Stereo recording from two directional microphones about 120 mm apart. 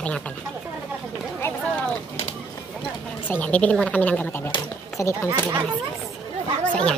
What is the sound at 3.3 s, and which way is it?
Speech, 15° left (ahead or behind).